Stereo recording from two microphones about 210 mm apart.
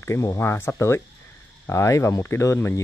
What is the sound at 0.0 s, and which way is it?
Speech, 15° left (ahead or behind).